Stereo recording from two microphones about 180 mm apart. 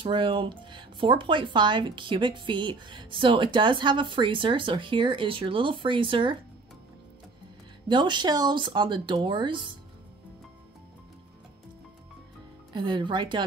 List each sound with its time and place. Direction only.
0.0 s speech: 25° right (ahead or behind)
7.9 s speech: 25° right (ahead or behind)
12.7 s speech: 25° right (ahead or behind)